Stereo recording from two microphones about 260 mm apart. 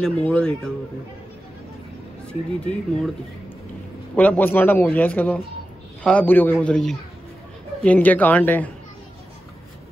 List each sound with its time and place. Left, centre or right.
0.0 s a man's voice: centre
2.2 s a man's voice: centre
4.1 s a man's voice: centre